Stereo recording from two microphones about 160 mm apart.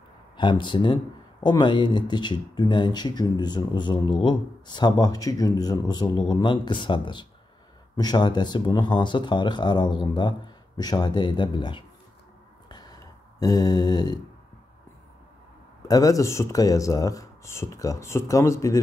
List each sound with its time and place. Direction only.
0.4 s speech: 30° left (ahead or behind)
12.6 s a sound: 25° left (ahead or behind)
15.9 s speech: 20° left (ahead or behind)